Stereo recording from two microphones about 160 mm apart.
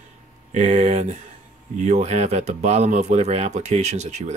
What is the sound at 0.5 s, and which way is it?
Speech, 45° right (ahead or behind).